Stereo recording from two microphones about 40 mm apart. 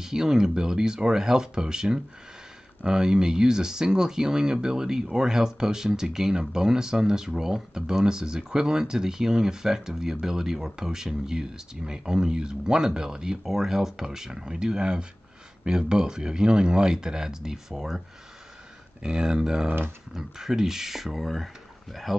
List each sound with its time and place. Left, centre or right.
0.0 s speech: centre
19.0 s speech: right; by 21.5 s centre